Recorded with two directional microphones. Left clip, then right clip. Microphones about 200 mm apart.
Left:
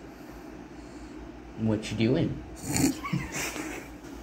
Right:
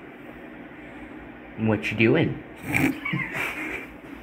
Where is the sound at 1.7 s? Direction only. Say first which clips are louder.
Right 7 dB; 15° right (ahead or behind).